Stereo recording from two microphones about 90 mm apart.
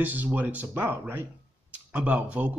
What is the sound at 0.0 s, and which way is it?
Speech, 20° right (ahead or behind).